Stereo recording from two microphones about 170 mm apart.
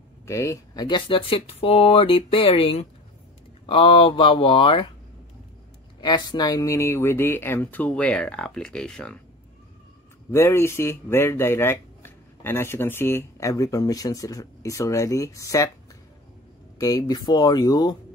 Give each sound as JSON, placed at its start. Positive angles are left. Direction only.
{"t": 0.3, "sound": "speech", "side_deg": 15}
{"t": 5.9, "sound": "speech", "side_deg": 25}
{"t": 10.3, "sound": "speech", "side_deg": 15}
{"t": 16.8, "sound": "speech", "side_deg": 25}